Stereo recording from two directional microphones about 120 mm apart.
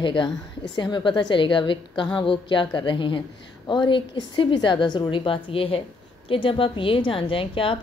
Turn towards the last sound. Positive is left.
turn(degrees=50)  # may be behind; listen again after turning